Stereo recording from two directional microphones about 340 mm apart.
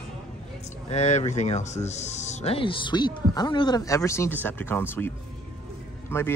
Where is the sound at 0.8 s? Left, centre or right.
Centre.